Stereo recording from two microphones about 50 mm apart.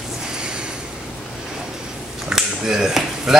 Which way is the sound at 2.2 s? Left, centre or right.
Centre.